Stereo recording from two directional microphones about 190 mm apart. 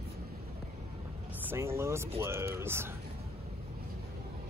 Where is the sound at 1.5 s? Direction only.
15° right (ahead or behind).